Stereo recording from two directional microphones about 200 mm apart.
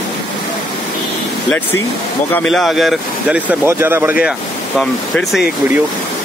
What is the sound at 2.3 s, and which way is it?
Speech, centre (ahead or behind).